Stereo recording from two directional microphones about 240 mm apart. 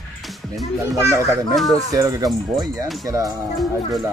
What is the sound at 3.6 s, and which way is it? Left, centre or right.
Speech, centre.